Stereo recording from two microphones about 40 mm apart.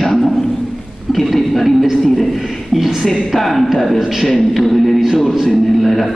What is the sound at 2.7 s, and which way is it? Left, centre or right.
A woman's voice, centre.